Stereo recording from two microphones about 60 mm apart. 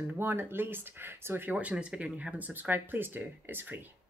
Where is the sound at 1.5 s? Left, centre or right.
Right.